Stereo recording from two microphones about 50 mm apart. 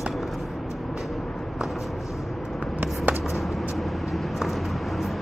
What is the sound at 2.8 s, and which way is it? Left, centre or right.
Shuffle, right.